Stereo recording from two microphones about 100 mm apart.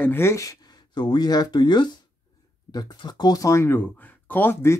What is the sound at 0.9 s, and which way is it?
Speech, 45° left (ahead or behind).